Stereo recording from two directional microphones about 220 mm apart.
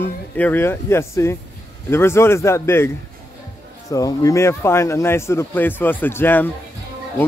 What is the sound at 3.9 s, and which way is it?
A man's voice, 15° left (ahead or behind).